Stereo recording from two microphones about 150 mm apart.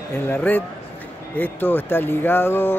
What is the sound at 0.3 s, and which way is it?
Speech, 10° left (ahead or behind).